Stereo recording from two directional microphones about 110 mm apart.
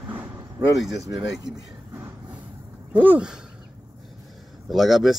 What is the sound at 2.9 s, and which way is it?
Speech, 15° right (ahead or behind).